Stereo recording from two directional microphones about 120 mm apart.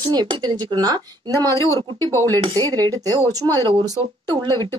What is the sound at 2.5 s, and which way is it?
Speech, 30° right (ahead or behind).